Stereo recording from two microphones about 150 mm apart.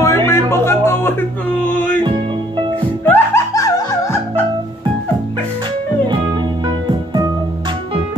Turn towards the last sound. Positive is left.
turn(degrees=-30)  # may be behind; listen again after turning